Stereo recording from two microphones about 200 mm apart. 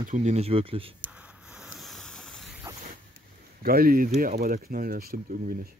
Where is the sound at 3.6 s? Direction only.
50° right (ahead or behind).